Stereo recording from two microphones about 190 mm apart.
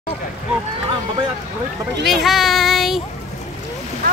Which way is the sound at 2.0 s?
Centre (ahead or behind).